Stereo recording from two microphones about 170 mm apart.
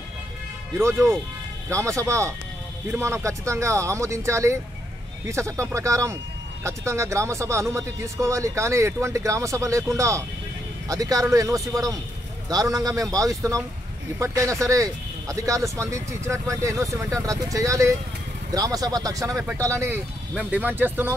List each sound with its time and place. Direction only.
0.7 s speech: 15° right (ahead or behind)